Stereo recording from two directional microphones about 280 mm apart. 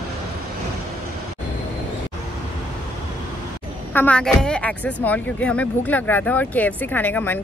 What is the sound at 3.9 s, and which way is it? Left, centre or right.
A woman's voice, centre.